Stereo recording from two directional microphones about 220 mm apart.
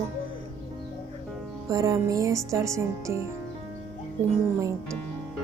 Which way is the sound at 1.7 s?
15° right (ahead or behind).